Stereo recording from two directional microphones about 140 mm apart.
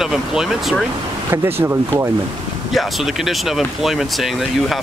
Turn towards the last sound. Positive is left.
turn(degrees=0)  # may be behind; listen again after turning